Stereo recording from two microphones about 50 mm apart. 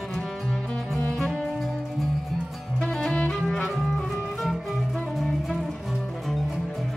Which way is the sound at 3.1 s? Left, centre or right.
Centre.